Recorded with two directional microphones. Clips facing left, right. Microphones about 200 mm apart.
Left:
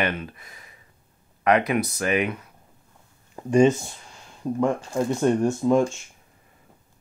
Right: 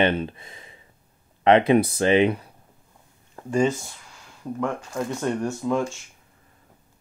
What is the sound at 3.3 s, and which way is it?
Speech, 20° left (ahead or behind).